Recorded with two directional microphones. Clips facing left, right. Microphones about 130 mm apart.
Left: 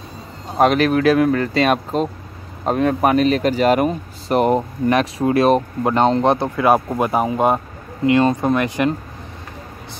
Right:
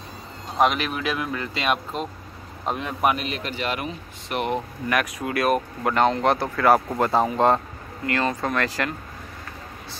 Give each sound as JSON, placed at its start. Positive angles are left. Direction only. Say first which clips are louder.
{"t": 0.6, "sound": "speech", "louder": "left 7 dB", "side_deg": 40}